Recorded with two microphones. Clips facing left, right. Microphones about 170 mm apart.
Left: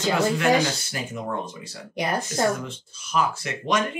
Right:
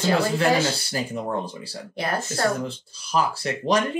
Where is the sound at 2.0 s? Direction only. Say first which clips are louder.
Left 1 dB; 15° left (ahead or behind).